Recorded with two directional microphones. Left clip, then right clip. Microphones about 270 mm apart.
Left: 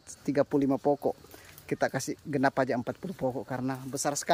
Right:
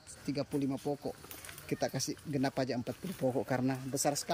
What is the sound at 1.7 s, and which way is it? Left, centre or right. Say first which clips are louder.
Speech: left 6 dB; centre.